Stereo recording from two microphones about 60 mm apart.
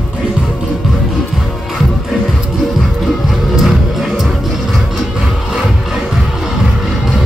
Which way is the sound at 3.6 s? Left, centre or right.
Centre.